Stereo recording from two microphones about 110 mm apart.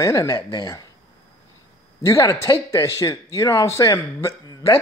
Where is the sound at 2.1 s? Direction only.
30° left (ahead or behind).